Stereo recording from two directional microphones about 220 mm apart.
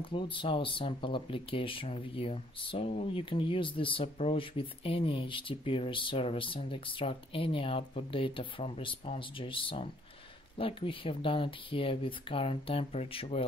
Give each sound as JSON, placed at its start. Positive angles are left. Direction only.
{"t": 0.0, "sound": "speech", "side_deg": 25}